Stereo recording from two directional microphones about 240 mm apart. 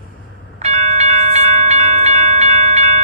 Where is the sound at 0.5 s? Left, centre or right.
Right.